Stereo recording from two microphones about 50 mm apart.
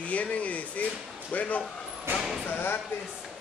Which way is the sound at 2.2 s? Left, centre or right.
Centre.